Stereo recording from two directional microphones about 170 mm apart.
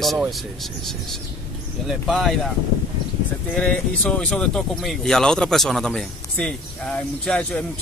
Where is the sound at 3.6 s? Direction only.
5° left (ahead or behind).